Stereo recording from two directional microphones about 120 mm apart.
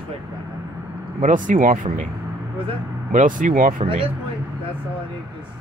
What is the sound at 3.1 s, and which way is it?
Speech, 90° right.